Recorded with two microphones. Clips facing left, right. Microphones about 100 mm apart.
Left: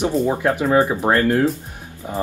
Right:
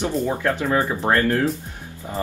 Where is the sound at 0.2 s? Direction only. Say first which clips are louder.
Left 3 dB; 20° left (ahead or behind).